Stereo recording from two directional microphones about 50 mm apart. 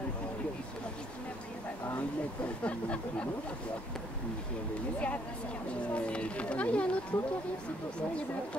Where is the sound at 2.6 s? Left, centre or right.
Left.